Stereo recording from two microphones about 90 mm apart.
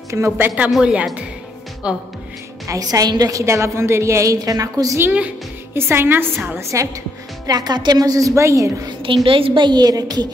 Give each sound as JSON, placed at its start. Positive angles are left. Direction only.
{"t": 0.1, "sound": "a woman's voice", "side_deg": -30}
{"t": 0.7, "sound": "a woman's voice", "side_deg": 0}
{"t": 2.6, "sound": "a woman's voice", "side_deg": -40}
{"t": 5.0, "sound": "a woman's voice", "side_deg": -15}
{"t": 5.8, "sound": "a woman's voice", "side_deg": -25}
{"t": 7.4, "sound": "a woman's voice", "side_deg": -50}
{"t": 9.0, "sound": "a woman's voice", "side_deg": -75}